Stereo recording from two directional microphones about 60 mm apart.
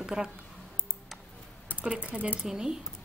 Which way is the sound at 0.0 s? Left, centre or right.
Centre.